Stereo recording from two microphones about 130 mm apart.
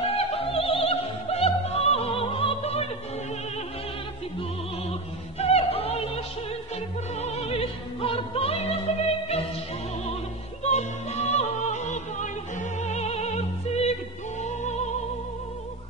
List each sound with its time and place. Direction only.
0.0 s opera: 50° left (ahead or behind)
5.4 s music: 50° left (ahead or behind)
10.7 s music: 60° left (ahead or behind)